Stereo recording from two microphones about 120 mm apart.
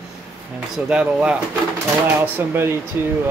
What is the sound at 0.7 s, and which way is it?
Speech, 10° right (ahead or behind).